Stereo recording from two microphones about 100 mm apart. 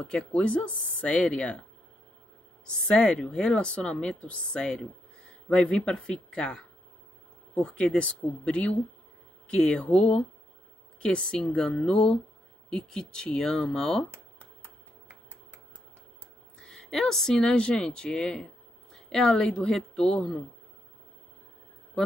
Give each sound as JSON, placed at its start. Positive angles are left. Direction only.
{"t": 0.0, "sound": "speech", "side_deg": 10}
{"t": 14.1, "sound": "finger snapping", "side_deg": -20}
{"t": 16.6, "sound": "speech", "side_deg": 5}
{"t": 22.0, "sound": "a man's voice", "side_deg": 5}